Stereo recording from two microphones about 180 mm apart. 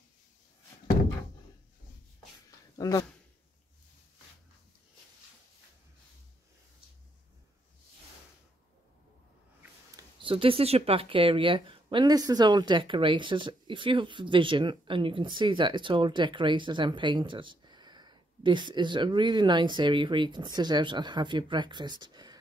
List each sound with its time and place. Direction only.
2.8 s speech: 20° left (ahead or behind)
10.2 s a woman's voice: 30° right (ahead or behind)